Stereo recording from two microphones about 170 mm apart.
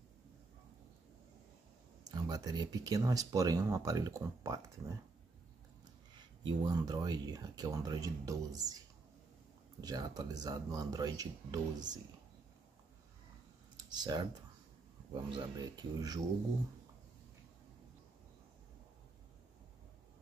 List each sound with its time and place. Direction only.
2.0 s speech: 25° right (ahead or behind)
6.1 s speech: 25° right (ahead or behind)
9.8 s speech: 25° right (ahead or behind)
13.8 s speech: 25° right (ahead or behind)
15.3 s speech: 25° right (ahead or behind)